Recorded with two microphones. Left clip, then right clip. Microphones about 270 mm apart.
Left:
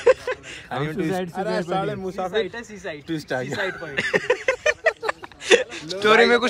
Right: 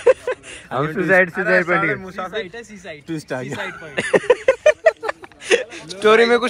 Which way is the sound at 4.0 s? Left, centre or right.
Centre.